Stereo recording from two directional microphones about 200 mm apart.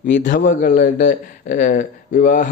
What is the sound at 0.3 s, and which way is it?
A man's voice, 45° left (ahead or behind).